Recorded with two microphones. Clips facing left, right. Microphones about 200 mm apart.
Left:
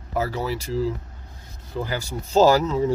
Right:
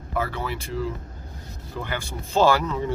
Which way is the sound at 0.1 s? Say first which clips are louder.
Left 3 dB; 40° left (ahead or behind).